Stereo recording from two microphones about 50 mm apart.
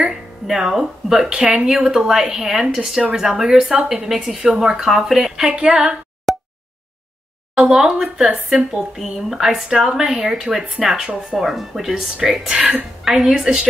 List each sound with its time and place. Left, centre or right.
0.1 s speech: centre
5.5 s speech: right
6.3 s a sound: centre
7.7 s speech: centre